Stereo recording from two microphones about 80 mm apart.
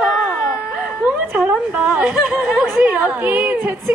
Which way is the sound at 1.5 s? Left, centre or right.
Centre.